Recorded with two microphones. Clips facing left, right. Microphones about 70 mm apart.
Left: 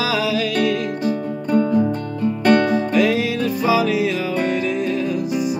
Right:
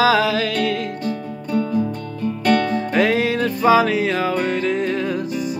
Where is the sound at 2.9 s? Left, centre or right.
Right.